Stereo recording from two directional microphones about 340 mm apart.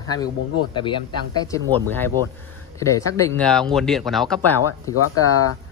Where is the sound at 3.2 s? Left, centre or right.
Centre.